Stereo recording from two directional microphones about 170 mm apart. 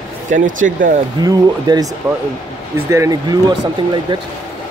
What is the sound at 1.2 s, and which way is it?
Speech, 25° right (ahead or behind).